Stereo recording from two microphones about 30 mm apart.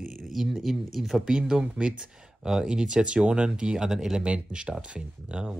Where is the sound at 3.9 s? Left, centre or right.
Centre.